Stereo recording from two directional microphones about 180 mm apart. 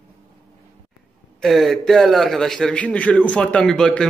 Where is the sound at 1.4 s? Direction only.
Centre (ahead or behind).